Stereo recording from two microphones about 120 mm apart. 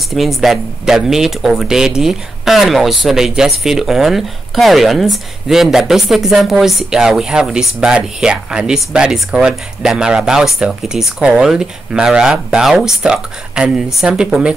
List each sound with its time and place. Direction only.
0.1 s speech: centre (ahead or behind)